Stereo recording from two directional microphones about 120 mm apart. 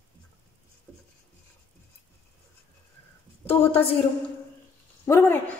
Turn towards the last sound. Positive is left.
turn(degrees=20)  # may be behind; listen again after turning